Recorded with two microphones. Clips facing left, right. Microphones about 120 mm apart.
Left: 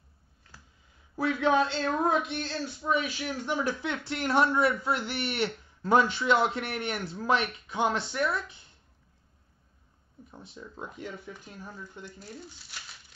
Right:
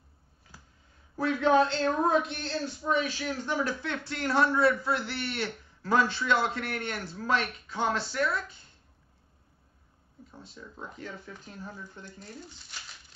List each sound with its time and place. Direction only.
1.1 s speech: 10° left (ahead or behind)
10.3 s speech: 20° left (ahead or behind)